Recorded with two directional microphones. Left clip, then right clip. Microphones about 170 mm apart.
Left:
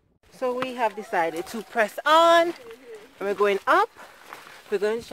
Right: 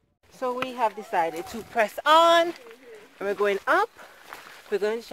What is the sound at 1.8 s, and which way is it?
Speech, centre (ahead or behind).